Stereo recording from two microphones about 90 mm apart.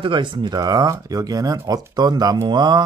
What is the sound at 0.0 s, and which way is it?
Speech, 65° right (ahead or behind).